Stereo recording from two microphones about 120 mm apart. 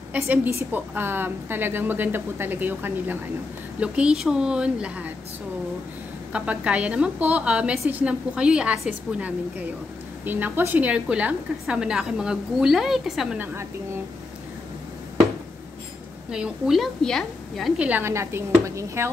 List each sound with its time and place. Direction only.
0.1 s a woman's voice: 15° right (ahead or behind)
6.3 s a woman's voice: 10° right (ahead or behind)
16.3 s a woman's voice: 5° right (ahead or behind)
17.7 s a woman's voice: 15° right (ahead or behind)